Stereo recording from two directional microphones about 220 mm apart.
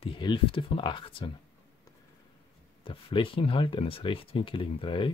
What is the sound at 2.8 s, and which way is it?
Speech, 25° left (ahead or behind).